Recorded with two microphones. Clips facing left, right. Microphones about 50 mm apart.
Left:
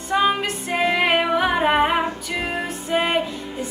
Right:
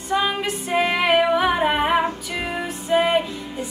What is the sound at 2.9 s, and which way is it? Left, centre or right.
Music, centre.